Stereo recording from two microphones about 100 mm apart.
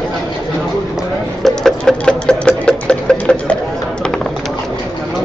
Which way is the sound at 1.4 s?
5° left (ahead or behind).